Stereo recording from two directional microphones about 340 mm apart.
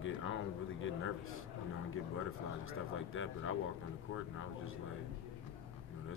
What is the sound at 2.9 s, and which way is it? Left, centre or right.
Speech, left.